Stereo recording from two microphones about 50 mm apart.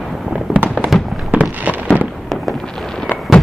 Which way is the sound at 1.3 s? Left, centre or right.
Right.